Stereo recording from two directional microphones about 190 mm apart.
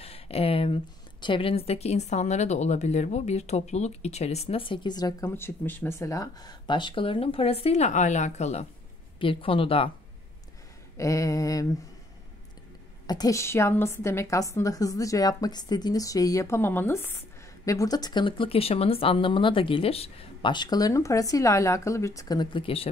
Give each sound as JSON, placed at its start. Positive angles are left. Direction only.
{"t": 0.0, "sound": "a sound", "side_deg": 30}
{"t": 1.2, "sound": "speech", "side_deg": 30}
{"t": 11.0, "sound": "a woman's voice", "side_deg": 15}
{"t": 13.0, "sound": "a woman's voice", "side_deg": 20}